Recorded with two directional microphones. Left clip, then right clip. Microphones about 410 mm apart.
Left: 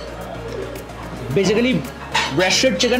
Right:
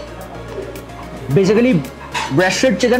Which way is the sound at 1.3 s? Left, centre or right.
Right.